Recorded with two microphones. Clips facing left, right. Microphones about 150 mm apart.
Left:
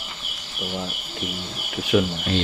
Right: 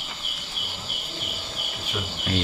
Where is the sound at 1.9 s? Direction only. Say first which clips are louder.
Left 14 dB; 80° left.